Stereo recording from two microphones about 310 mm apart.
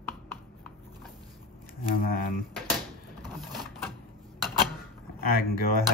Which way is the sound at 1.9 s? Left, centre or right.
Left.